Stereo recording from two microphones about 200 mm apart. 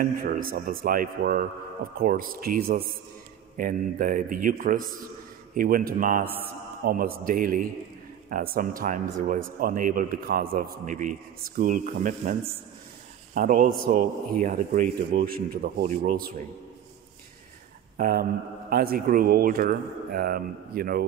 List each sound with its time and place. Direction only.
0.0 s a man's voice: 45° right (ahead or behind)
17.9 s a man's voice: 45° right (ahead or behind)